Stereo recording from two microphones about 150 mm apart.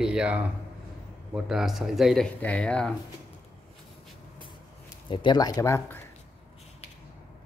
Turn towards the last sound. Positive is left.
turn(degrees=20)  # may be behind; listen again after turning